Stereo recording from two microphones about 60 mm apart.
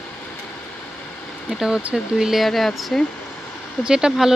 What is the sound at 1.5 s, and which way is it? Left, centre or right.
Speech, centre.